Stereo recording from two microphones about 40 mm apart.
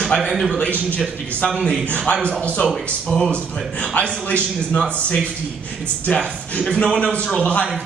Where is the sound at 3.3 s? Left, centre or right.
Left.